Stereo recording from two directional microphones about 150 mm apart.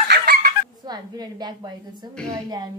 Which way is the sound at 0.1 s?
90° right.